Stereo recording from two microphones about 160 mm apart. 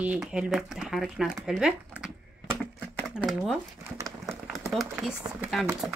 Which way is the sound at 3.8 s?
20° right (ahead or behind).